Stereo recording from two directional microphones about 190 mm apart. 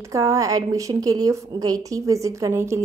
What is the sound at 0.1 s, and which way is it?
A woman's voice, 15° right (ahead or behind).